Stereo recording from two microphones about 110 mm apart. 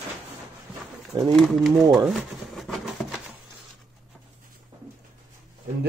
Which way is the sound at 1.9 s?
Centre (ahead or behind).